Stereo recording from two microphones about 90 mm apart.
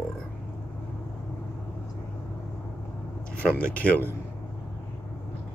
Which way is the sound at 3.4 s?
15° left (ahead or behind).